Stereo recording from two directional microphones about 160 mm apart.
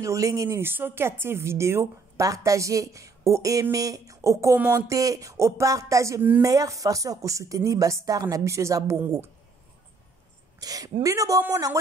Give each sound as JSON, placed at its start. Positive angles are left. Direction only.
{"t": 0.0, "sound": "speech", "side_deg": -20}
{"t": 10.6, "sound": "speech", "side_deg": -20}